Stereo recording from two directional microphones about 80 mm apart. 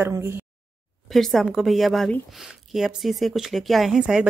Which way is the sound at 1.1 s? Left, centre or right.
Centre.